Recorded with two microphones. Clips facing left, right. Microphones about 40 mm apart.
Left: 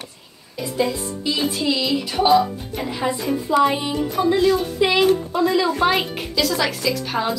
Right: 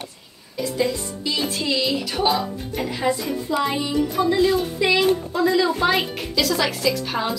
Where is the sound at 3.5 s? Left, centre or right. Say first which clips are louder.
Left 5 dB; left.